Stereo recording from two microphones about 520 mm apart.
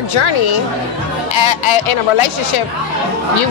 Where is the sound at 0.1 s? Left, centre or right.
Left.